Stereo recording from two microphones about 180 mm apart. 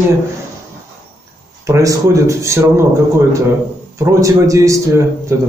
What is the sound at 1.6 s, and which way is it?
A man's voice, 15° right (ahead or behind).